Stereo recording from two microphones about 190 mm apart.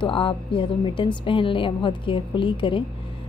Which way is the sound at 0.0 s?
30° left (ahead or behind).